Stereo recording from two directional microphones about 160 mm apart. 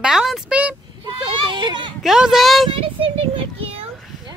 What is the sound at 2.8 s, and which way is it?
A child's voice, 35° right (ahead or behind).